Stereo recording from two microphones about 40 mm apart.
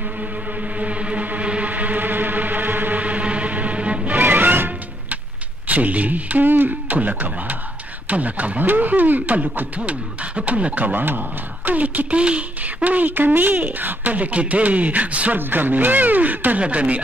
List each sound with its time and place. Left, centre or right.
0.2 s a sound: right
1.7 s vehicle: right
3.0 s a sound: right
4.2 s music: right
5.7 s speech: right
6.7 s speech: right
9.8 s speech: right
12.2 s speech: right
15.3 s speech: right